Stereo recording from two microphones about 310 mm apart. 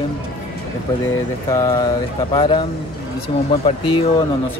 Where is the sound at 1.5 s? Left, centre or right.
Centre.